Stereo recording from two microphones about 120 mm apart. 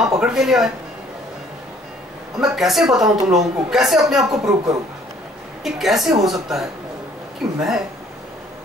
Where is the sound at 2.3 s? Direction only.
5° right (ahead or behind).